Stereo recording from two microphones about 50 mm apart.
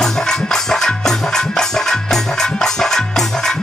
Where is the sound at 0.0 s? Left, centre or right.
Centre.